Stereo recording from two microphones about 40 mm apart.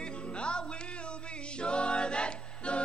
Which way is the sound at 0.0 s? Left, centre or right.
Left.